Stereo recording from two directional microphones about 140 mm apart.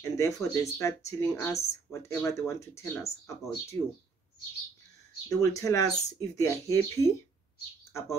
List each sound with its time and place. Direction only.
0.0 s speech: 25° left (ahead or behind)
5.3 s speech: 25° left (ahead or behind)